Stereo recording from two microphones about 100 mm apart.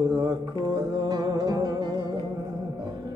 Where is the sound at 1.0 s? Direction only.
40° right (ahead or behind).